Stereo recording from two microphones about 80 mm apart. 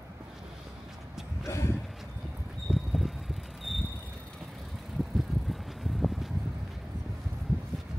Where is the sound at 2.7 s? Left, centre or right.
Centre.